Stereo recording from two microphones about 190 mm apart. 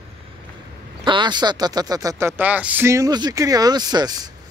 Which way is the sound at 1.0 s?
25° right (ahead or behind).